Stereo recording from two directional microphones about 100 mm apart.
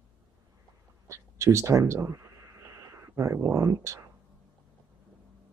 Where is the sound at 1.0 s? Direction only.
30° right (ahead or behind).